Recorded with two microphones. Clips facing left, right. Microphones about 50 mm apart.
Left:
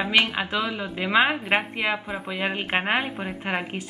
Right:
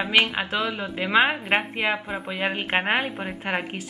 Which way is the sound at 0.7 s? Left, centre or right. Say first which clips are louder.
Right 1 dB; centre.